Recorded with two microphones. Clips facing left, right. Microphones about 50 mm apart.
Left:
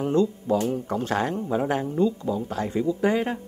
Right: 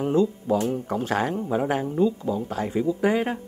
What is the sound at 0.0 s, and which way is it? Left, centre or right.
Speech, centre.